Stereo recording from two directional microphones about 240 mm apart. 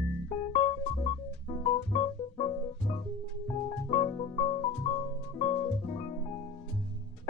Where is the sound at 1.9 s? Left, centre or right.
Centre.